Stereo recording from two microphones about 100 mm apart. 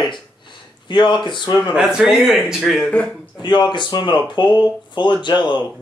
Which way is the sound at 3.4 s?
50° left (ahead or behind).